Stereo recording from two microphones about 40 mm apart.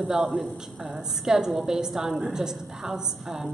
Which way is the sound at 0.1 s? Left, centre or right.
Centre.